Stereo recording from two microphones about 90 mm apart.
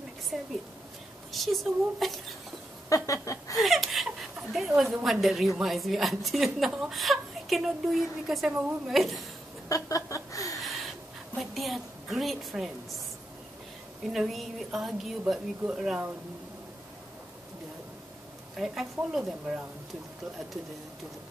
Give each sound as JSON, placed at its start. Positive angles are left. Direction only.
{"t": 0.3, "sound": "a woman's voice", "side_deg": -10}
{"t": 2.9, "sound": "a sound", "side_deg": 35}
{"t": 3.5, "sound": "a sound", "side_deg": 0}
{"t": 4.5, "sound": "a woman's voice", "side_deg": 0}
{"t": 9.7, "sound": "chuckle", "side_deg": 40}
{"t": 10.6, "sound": "wheeze", "side_deg": 0}
{"t": 11.3, "sound": "a woman's voice", "side_deg": 0}
{"t": 14.1, "sound": "a woman's voice", "side_deg": -5}
{"t": 18.6, "sound": "a woman's voice", "side_deg": -5}